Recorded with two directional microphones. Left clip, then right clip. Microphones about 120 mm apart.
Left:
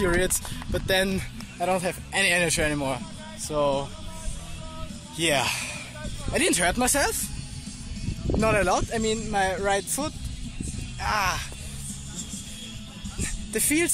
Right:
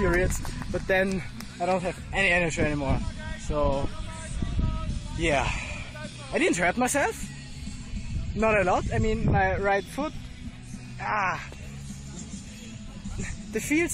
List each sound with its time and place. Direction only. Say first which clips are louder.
0.0 s speech: left 1 dB; 20° left (ahead or behind)
5.2 s speech: left 2 dB; 20° left (ahead or behind)
8.4 s speech: even; 20° left (ahead or behind)
9.3 s speech: right 1 dB; centre (ahead or behind)
13.2 s speech: left 3 dB; 20° left (ahead or behind)